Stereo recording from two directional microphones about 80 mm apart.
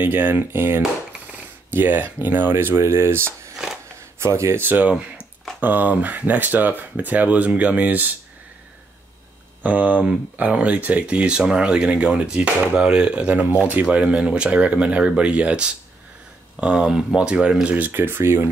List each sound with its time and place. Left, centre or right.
0.0 s speech: right
9.6 s speech: centre
17.7 s speech: right